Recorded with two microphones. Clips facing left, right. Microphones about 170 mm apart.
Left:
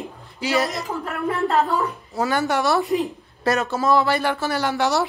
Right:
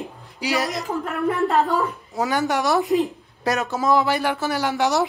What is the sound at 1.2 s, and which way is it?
Speech, 20° right (ahead or behind).